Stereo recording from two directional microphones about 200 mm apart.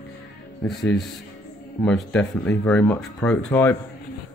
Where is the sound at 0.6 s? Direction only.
Centre (ahead or behind).